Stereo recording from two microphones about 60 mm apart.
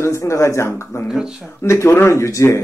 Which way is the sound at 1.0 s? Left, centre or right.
Centre.